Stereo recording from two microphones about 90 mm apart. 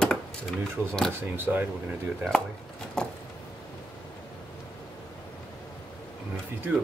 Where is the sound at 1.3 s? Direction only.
25° right (ahead or behind).